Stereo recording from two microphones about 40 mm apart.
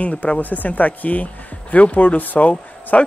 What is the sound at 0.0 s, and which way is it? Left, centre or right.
Speech, left.